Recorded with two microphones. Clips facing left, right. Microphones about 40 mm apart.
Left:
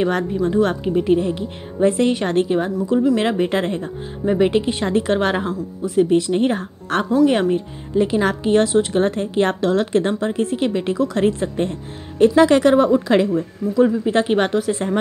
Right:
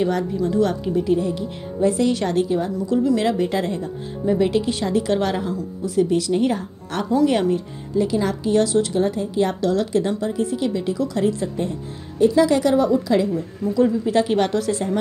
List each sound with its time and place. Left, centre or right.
0.0 s a woman's voice: left
6.6 s a woman's voice: left
7.2 s a woman's voice: left
8.9 s a woman's voice: left
13.1 s a woman's voice: left
13.7 s speech: left